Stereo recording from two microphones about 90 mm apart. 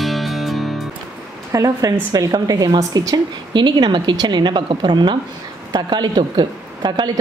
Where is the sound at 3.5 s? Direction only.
55° right (ahead or behind).